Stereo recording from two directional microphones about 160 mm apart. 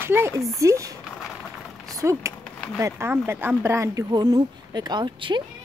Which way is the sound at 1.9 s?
20° right (ahead or behind).